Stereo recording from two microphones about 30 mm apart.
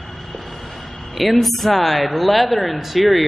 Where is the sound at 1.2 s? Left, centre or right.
Centre.